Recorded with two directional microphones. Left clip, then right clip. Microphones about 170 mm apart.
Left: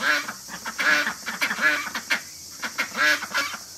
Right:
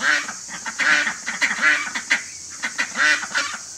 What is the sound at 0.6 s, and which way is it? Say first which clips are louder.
Duck: right 3 dB; 15° left (ahead or behind).